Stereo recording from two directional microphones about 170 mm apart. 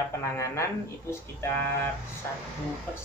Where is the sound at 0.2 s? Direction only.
15° left (ahead or behind).